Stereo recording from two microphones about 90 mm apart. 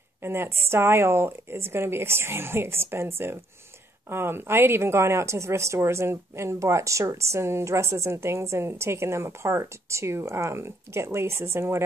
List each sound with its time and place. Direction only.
0.2 s a woman's voice: 25° right (ahead or behind)